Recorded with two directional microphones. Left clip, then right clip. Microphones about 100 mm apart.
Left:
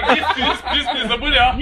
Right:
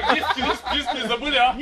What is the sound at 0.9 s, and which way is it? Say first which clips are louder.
Speech: left 4 dB; 40° right (ahead or behind).